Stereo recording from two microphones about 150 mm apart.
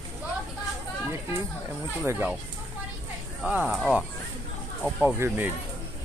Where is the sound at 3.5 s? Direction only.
10° right (ahead or behind).